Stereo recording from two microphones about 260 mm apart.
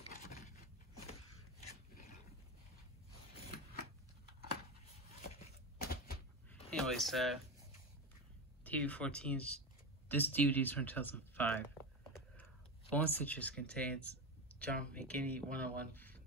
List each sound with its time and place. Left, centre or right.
5.4 s a sound: left
6.7 s speech: centre
8.6 s speech: centre
12.9 s speech: centre